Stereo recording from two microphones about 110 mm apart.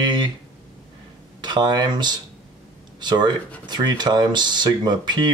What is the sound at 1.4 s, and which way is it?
Speech, 40° right (ahead or behind).